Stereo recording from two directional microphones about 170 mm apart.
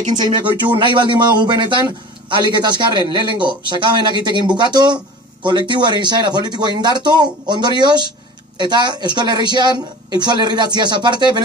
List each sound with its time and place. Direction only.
0.2 s speech: 30° right (ahead or behind)